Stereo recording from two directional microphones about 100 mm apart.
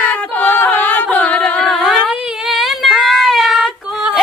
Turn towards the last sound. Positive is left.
turn(degrees=-5)  # may be behind; listen again after turning